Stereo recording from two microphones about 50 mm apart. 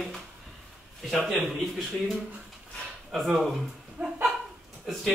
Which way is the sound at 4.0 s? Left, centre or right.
Right.